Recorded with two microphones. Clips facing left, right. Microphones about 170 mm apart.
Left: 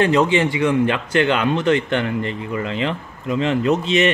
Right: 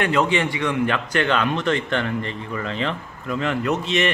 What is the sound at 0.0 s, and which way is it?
A man's voice, 25° left (ahead or behind).